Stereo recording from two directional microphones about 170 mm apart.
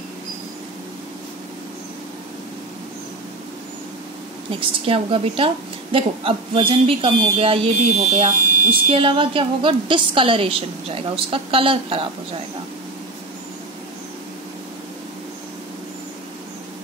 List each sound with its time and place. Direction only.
4.6 s a woman's voice: 35° right (ahead or behind)